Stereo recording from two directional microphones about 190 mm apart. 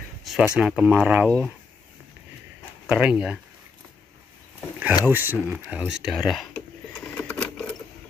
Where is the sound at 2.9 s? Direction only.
5° right (ahead or behind).